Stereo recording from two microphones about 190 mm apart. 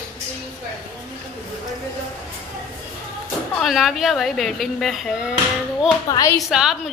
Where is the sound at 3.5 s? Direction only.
Centre (ahead or behind).